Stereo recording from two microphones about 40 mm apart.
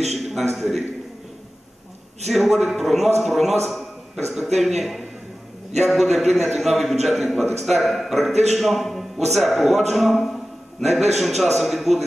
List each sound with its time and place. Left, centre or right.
0.1 s a man's voice: centre
2.2 s a man's voice: centre